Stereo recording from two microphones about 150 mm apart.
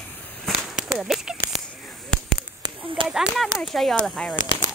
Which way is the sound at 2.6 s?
35° right (ahead or behind).